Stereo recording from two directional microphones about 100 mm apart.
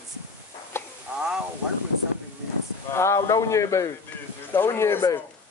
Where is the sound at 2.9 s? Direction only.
30° left (ahead or behind).